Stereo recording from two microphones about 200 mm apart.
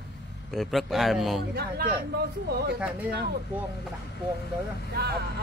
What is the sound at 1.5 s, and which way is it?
Speech, 50° right (ahead or behind).